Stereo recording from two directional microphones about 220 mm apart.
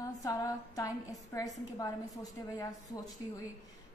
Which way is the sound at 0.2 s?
15° left (ahead or behind).